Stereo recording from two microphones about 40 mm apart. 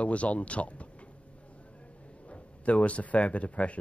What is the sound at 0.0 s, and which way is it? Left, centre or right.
Speech, left.